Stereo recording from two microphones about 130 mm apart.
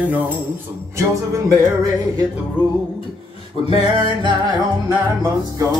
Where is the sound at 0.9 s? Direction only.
25° right (ahead or behind).